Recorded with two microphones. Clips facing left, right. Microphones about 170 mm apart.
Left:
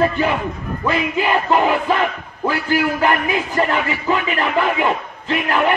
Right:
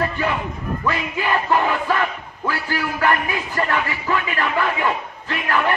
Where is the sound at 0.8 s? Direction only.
20° left (ahead or behind).